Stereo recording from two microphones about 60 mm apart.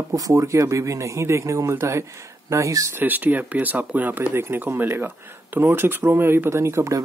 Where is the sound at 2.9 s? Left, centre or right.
Right.